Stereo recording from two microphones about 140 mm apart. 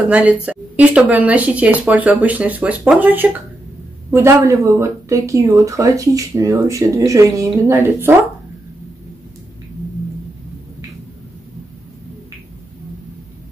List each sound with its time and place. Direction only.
0.1 s speech: 10° right (ahead or behind)